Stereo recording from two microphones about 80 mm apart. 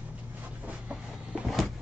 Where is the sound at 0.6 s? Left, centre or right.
Centre.